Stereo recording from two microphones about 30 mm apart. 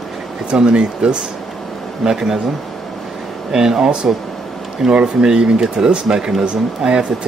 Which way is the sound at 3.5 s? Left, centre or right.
Right.